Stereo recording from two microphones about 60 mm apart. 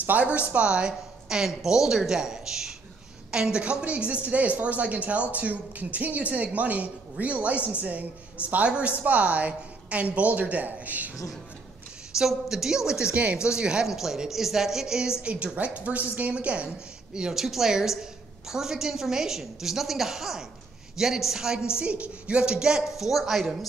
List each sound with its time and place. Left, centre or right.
0.0 s a woman's voice: right
12.2 s a woman's voice: centre
13.1 s a woman's voice: right; by 23.7 s centre